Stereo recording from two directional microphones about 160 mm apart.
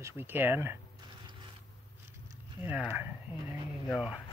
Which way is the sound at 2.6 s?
10° right (ahead or behind).